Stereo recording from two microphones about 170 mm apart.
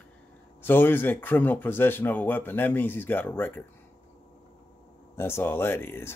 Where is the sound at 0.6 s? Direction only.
15° left (ahead or behind).